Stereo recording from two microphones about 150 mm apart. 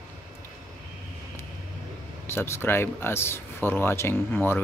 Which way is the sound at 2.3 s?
15° left (ahead or behind).